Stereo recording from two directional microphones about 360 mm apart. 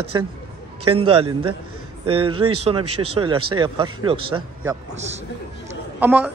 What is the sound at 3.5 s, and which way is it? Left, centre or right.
Speech, centre.